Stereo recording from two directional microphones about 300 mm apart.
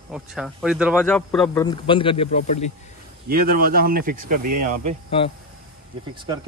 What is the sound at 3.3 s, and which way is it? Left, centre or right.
Speech, right.